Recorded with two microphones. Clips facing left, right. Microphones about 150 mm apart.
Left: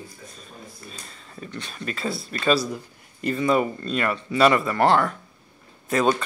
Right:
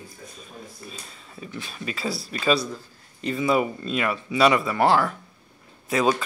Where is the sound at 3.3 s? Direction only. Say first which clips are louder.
Left 1 dB; 5° right (ahead or behind).